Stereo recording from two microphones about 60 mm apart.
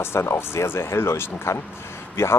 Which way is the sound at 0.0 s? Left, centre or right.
Left.